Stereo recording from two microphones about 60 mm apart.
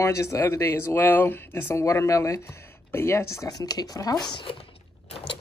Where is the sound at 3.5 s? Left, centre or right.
Left.